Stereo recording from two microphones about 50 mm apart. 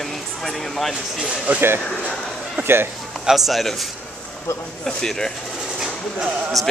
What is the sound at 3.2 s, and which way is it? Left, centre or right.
Speech, centre.